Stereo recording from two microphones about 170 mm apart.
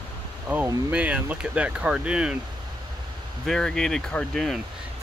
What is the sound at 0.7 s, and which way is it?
Speech, 10° right (ahead or behind).